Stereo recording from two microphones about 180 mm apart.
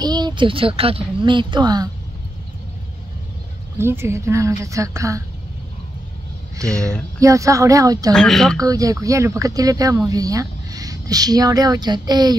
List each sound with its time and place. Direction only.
0.0 s a woman's voice: 25° right (ahead or behind)
3.7 s a woman's voice: 15° right (ahead or behind)
7.2 s a woman's voice: 15° right (ahead or behind)
8.1 s speech: 5° left (ahead or behind)
8.5 s a woman's voice: 20° right (ahead or behind)